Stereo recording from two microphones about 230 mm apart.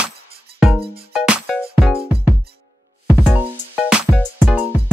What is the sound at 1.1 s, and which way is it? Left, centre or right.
Music, centre.